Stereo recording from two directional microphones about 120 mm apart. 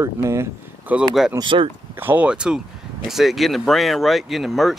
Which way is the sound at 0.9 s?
10° right (ahead or behind).